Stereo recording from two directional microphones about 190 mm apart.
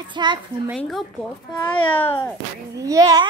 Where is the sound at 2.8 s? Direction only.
20° right (ahead or behind).